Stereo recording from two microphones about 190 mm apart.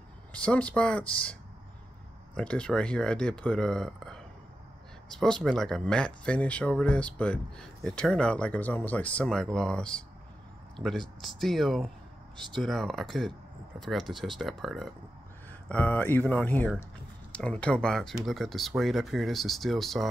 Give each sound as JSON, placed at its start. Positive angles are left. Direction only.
{"t": 0.3, "sound": "speech", "side_deg": 5}
{"t": 2.3, "sound": "speech", "side_deg": 5}